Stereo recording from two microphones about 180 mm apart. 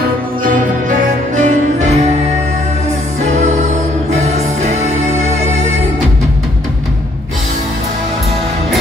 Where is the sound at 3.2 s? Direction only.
40° right (ahead or behind).